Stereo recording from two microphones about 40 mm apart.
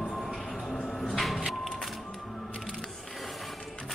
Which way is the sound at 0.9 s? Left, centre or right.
Centre.